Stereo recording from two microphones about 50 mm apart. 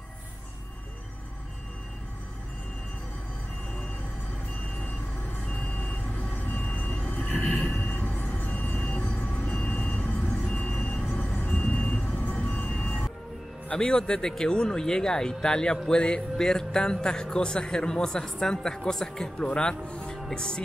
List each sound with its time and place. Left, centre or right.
5.5 s vehicle: left
7.1 s train: left
8.4 s music: left
9.5 s vehicle: left
13.7 s speech: centre